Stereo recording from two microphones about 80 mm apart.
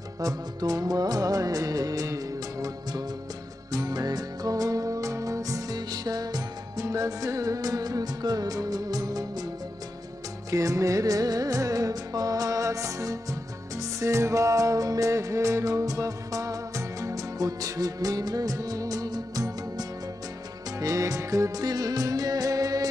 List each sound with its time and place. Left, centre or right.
0.2 s music: right
10.5 s music: right